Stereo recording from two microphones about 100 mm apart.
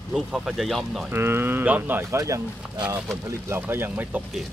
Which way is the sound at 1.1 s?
25° right (ahead or behind).